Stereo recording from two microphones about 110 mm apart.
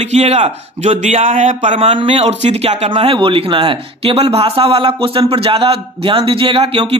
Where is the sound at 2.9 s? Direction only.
55° right (ahead or behind).